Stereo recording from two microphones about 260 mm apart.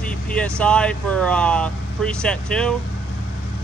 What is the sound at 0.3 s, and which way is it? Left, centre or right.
Speech, centre.